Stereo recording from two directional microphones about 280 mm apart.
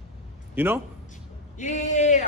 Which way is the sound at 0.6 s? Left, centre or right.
Centre.